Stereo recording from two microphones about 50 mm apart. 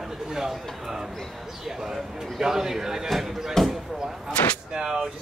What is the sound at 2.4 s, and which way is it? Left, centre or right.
A man's voice, centre.